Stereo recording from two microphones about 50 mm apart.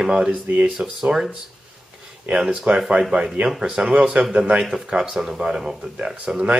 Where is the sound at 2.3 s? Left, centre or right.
Centre.